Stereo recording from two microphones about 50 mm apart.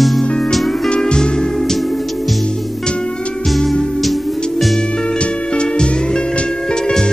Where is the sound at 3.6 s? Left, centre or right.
Centre.